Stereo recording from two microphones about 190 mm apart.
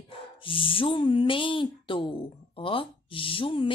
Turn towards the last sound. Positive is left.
turn(degrees=25)  # may be behind; listen again after turning